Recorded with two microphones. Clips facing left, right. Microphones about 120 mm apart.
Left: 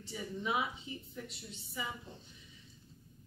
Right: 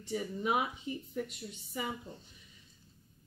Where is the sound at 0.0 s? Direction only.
55° right (ahead or behind).